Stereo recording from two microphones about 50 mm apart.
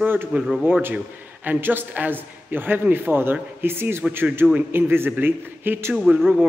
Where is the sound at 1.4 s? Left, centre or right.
Right.